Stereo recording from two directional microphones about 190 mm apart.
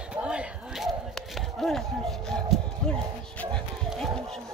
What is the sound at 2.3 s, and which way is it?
Music, 5° left (ahead or behind).